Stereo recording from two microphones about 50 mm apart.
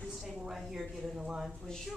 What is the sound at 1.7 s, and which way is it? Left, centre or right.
Speech, centre.